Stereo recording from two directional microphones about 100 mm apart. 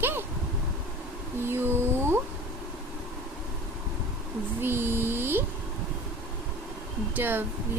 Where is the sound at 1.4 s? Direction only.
25° right (ahead or behind).